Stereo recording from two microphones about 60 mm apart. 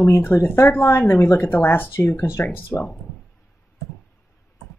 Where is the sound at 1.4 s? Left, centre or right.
Left.